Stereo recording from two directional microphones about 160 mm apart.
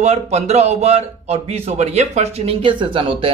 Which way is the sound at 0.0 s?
45° right (ahead or behind).